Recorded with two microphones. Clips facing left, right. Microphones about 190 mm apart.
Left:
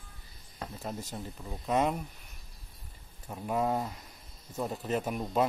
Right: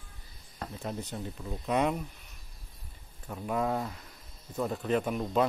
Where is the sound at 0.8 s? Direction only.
5° left (ahead or behind).